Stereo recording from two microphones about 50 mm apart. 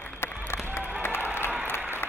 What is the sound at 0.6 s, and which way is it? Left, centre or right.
Crowd, left.